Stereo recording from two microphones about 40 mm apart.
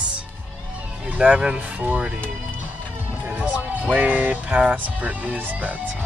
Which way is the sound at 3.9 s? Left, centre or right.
Right.